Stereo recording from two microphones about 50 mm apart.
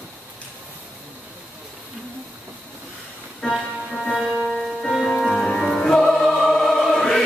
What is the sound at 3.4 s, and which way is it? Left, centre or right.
Music, centre.